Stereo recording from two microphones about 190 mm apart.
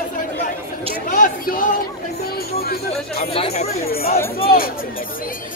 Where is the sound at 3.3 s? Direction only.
30° left (ahead or behind).